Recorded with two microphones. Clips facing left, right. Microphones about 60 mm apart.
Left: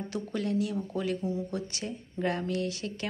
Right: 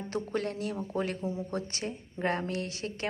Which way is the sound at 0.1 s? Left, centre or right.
Right.